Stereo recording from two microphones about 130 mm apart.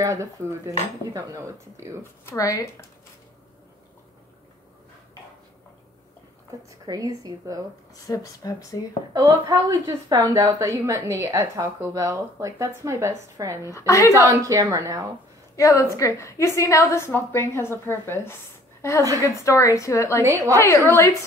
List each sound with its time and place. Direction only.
0.0 s a woman's voice: 20° right (ahead or behind)
2.2 s a woman's voice: 25° left (ahead or behind)
6.9 s a woman's voice: 25° right (ahead or behind)
7.9 s a woman's voice: 25° left (ahead or behind)
9.1 s a woman's voice: 25° right (ahead or behind)
13.7 s a woman's voice: 25° left (ahead or behind)
14.1 s a woman's voice: 25° right (ahead or behind)
15.5 s a woman's voice: 25° left (ahead or behind)
20.2 s a woman's voice: 25° right (ahead or behind)
20.5 s a woman's voice: 20° left (ahead or behind)